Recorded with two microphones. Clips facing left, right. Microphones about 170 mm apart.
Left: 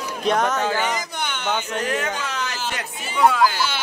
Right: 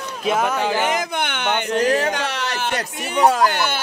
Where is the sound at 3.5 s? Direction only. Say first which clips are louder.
Right 3 dB; 60° right (ahead or behind).